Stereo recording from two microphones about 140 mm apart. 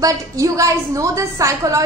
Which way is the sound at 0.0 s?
25° right (ahead or behind).